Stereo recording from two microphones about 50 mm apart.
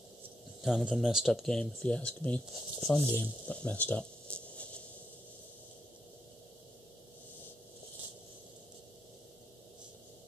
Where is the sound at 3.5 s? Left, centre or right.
Left.